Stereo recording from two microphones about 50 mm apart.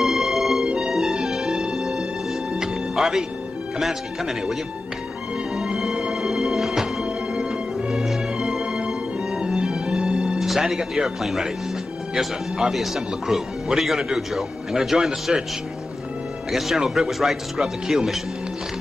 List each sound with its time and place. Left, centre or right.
0.0 s music: centre
3.8 s speech: centre
5.6 s music: centre
10.4 s speech: centre
16.5 s speech: centre